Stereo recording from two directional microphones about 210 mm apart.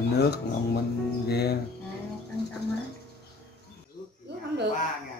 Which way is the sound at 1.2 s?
50° left (ahead or behind).